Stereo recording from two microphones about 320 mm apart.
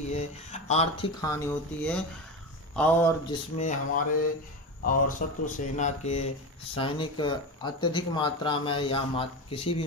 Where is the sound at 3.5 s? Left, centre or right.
Left.